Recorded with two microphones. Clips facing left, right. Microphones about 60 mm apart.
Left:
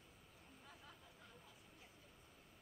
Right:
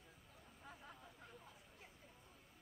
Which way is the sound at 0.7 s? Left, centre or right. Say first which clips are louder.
Right 6 dB; right.